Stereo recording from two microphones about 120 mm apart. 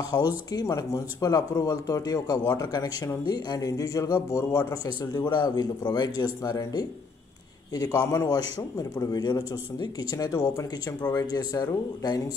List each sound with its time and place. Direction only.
0.1 s speech: 20° left (ahead or behind)
0.5 s a man's voice: 35° left (ahead or behind)